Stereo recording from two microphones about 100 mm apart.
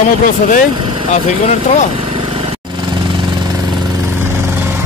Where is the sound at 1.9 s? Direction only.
60° right (ahead or behind).